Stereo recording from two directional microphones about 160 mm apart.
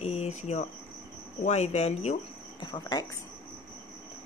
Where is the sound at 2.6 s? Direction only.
25° left (ahead or behind).